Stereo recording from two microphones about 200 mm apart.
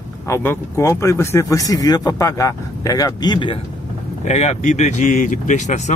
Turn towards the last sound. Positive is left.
turn(degrees=35)  # may be behind; listen again after turning